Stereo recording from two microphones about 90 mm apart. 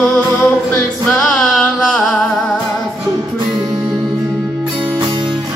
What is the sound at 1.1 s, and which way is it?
Music, 5° left (ahead or behind).